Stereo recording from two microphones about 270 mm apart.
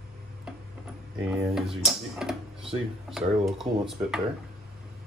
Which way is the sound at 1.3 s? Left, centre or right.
Centre.